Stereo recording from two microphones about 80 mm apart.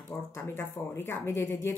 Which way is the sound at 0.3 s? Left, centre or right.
Left.